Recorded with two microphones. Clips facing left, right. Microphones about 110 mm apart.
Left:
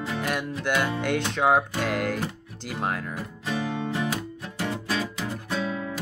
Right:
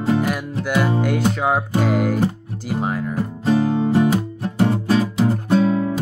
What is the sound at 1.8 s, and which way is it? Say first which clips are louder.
Speech: right 8 dB; 10° right (ahead or behind).